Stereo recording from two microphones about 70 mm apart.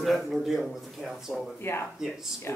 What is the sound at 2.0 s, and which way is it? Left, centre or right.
Speech, centre.